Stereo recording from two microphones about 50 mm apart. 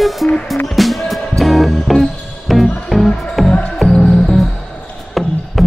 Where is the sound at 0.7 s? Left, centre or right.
Centre.